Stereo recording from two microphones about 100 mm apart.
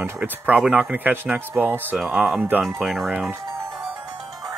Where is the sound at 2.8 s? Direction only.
Centre (ahead or behind).